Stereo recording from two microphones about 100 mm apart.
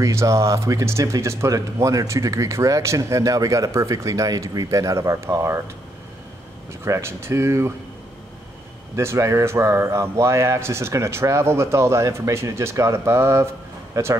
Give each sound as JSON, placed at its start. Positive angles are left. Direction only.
{"t": 0.0, "sound": "speech", "side_deg": -30}
{"t": 6.8, "sound": "speech", "side_deg": -25}
{"t": 8.9, "sound": "speech", "side_deg": -30}